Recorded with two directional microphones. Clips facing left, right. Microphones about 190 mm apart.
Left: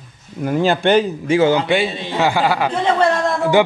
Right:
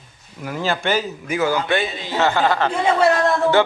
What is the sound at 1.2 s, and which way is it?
Speech, 30° left (ahead or behind).